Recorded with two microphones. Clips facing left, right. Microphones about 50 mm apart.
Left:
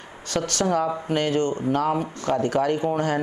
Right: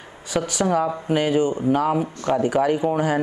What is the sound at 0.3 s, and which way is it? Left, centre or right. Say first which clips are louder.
Speech: right 2 dB; centre.